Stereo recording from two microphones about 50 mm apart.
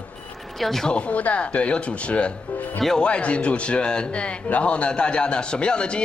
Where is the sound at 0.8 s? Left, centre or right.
Left.